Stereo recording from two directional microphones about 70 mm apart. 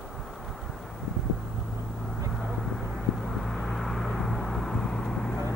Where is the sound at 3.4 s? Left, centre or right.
Centre.